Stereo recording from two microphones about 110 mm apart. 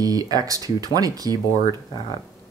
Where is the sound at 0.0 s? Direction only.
35° right (ahead or behind).